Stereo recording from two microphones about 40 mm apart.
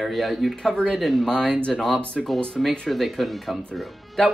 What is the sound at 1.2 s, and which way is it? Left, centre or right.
Speech, centre.